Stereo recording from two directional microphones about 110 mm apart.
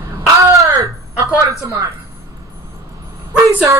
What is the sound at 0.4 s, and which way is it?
Wail, 30° right (ahead or behind).